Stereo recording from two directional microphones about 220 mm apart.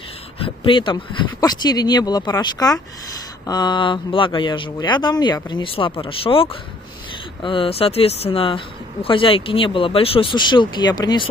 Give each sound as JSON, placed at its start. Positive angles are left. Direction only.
{"t": 0.4, "sound": "speech", "side_deg": 20}